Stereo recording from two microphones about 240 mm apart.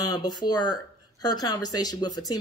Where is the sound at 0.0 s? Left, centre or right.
Centre.